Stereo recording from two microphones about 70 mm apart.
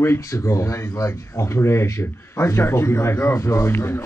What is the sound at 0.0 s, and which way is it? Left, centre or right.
Speech, left.